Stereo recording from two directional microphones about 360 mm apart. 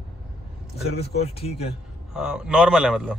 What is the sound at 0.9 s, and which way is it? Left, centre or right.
Speech, centre.